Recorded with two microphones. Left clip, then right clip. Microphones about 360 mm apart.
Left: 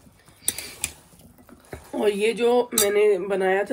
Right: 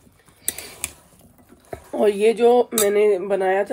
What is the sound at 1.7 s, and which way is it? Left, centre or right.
Speech, right.